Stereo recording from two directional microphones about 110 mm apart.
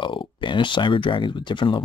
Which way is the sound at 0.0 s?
50° left (ahead or behind).